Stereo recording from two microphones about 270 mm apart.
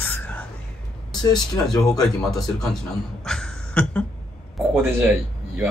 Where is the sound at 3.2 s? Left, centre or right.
Centre.